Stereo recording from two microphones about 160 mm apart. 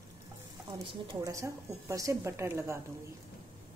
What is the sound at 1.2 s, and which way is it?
A woman's voice, 20° right (ahead or behind).